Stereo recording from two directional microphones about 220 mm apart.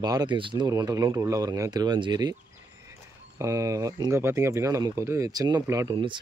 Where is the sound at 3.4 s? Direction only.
15° right (ahead or behind).